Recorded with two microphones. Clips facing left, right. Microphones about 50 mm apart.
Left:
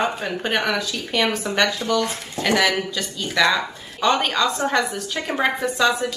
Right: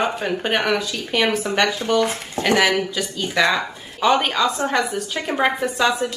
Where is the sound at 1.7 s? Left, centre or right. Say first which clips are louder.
Right 3 dB; right.